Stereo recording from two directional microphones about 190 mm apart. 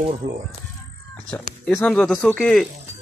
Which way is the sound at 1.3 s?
5° left (ahead or behind).